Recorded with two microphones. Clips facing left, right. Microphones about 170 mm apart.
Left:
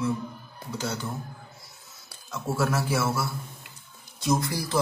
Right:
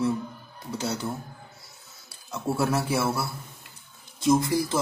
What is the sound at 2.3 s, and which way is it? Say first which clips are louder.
Speech: right 1 dB; 30° right (ahead or behind).